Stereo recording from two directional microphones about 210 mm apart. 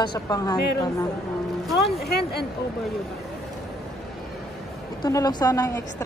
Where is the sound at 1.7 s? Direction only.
Centre (ahead or behind).